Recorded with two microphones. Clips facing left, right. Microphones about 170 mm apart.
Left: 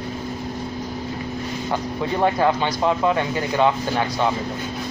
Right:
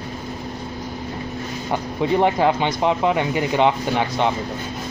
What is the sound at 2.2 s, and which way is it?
Speech, 20° right (ahead or behind).